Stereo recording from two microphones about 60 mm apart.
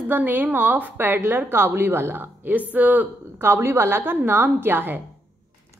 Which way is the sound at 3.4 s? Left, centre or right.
Right.